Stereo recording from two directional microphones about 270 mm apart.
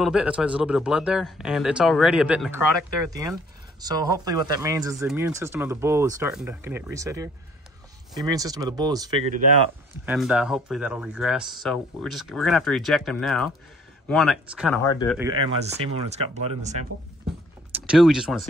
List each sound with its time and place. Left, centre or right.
0.0 s speech: centre
10.0 s speech: centre
14.8 s speech: centre
15.1 s speech: centre
17.8 s speech: centre